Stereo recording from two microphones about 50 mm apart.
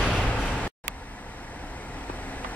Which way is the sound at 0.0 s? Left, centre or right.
Centre.